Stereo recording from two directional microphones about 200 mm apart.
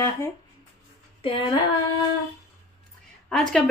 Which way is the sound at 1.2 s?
25° left (ahead or behind).